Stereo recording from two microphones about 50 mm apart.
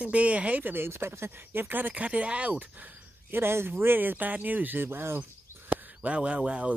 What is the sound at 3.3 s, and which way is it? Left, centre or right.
Speech, right.